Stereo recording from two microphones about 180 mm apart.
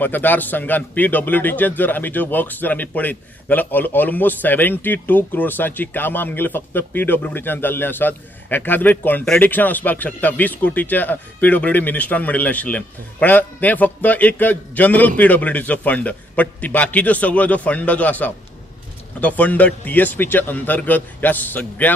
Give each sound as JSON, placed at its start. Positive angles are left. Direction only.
{"t": 0.0, "sound": "a man's voice", "side_deg": 10}